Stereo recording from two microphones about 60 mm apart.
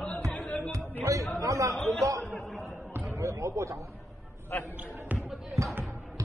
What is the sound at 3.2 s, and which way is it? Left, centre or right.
Speech, right.